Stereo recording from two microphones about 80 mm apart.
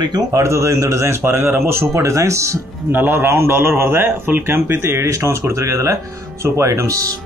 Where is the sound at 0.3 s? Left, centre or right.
Right.